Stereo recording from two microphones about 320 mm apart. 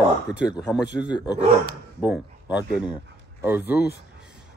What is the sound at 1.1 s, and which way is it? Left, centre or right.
Speech, centre.